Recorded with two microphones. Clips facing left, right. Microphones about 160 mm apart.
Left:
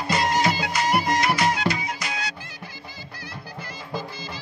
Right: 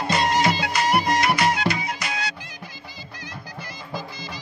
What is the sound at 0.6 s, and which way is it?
Music, 70° right (ahead or behind).